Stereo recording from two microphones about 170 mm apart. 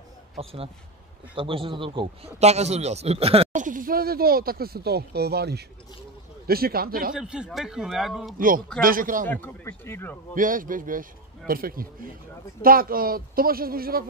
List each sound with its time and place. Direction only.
0.4 s a man's voice: 35° right (ahead or behind)
3.6 s speech: 55° right (ahead or behind)
7.2 s speech: 5° right (ahead or behind)
8.4 s a man's voice: 55° right (ahead or behind)
9.3 s speech: 10° left (ahead or behind)
10.3 s a man's voice: 55° right (ahead or behind)